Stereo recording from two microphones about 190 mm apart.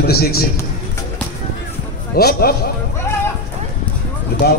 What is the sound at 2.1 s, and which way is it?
Speech, 55° left (ahead or behind).